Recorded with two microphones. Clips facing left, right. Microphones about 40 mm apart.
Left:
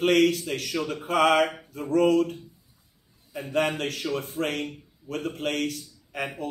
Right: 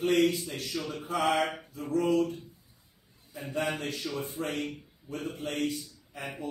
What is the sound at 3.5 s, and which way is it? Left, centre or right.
A man's voice, left.